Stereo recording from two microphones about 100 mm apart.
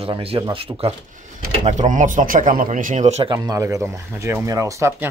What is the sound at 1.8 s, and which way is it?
Speech, 90° right.